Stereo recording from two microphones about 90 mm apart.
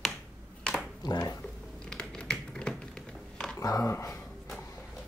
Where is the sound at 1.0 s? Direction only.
50° left (ahead or behind).